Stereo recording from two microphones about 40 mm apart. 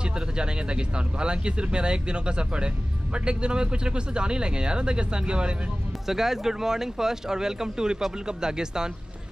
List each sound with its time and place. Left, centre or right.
0.0 s speech: right
6.0 s speech: centre